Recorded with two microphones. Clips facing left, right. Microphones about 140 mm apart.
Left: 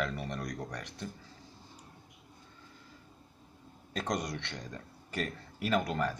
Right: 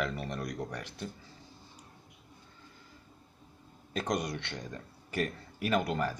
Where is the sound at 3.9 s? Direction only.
5° right (ahead or behind).